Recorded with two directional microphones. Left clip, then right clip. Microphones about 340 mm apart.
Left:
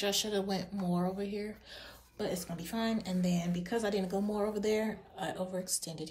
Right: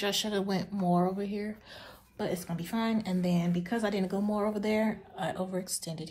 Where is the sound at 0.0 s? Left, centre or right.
Centre.